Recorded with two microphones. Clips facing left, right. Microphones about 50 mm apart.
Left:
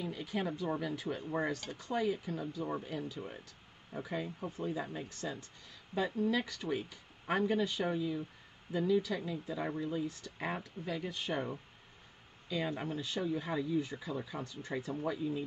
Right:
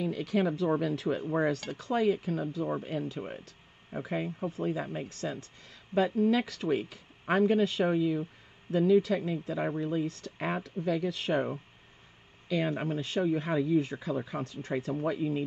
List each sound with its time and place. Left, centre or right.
0.0 s speech: right
0.7 s speech: right
10.9 s speech: right
12.4 s speech: right
13.9 s speech: right